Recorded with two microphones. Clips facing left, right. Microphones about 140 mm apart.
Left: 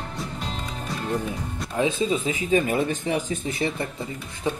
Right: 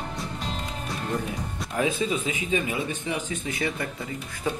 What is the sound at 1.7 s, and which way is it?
Speech, 25° left (ahead or behind).